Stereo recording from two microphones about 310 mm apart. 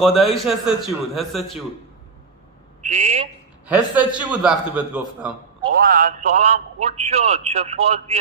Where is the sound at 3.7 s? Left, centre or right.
Centre.